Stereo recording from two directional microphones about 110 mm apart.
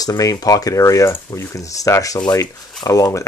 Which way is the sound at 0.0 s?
35° left (ahead or behind).